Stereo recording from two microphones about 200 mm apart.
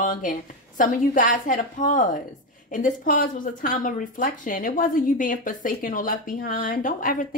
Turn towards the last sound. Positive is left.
turn(degrees=45)  # may be behind; listen again after turning